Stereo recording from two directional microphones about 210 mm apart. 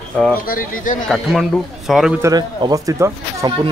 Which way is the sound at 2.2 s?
20° right (ahead or behind).